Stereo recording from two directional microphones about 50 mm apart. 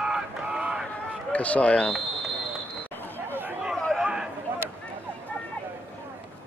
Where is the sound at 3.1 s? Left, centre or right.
Right.